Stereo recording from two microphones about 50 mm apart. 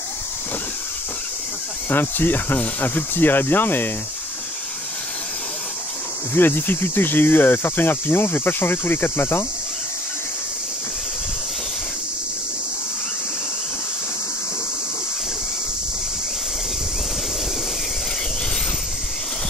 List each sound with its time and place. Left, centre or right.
1.9 s speech: left
6.3 s speech: left